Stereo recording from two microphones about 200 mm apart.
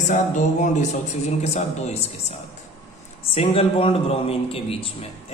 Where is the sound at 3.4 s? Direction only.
30° left (ahead or behind).